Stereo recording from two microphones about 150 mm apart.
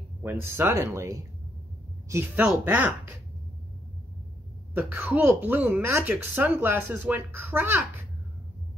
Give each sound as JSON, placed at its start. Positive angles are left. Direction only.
{"t": 0.2, "sound": "a woman's voice", "side_deg": -15}
{"t": 4.7, "sound": "a woman's voice", "side_deg": -10}